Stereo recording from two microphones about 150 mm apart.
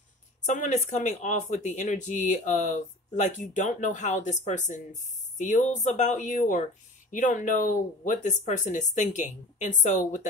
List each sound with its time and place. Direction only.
0.4 s speech: 55° left (ahead or behind)